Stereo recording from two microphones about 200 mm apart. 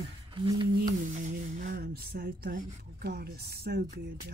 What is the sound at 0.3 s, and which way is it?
Speech, 25° right (ahead or behind).